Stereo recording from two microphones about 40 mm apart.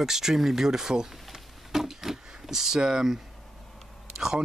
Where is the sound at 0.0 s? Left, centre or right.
Centre.